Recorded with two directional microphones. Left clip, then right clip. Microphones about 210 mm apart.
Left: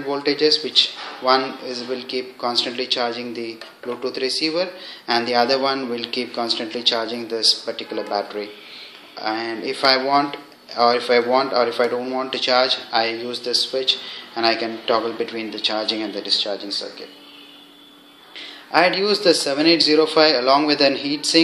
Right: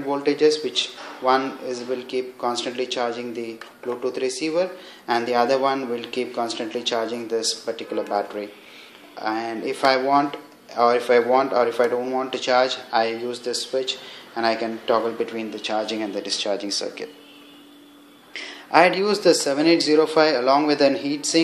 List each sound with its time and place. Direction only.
0.1 s speech: 10° right (ahead or behind)
16.5 s speech: 90° right
18.7 s speech: 20° right (ahead or behind)